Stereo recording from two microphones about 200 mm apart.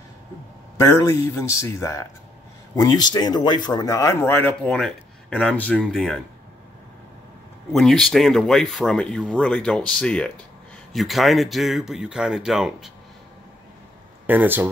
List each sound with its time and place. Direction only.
0.7 s speech: 15° left (ahead or behind); by 6.1 s centre (ahead or behind)
7.7 s speech: centre (ahead or behind)
14.2 s speech: 10° right (ahead or behind)